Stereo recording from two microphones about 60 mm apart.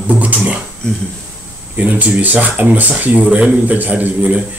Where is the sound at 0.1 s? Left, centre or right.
Right.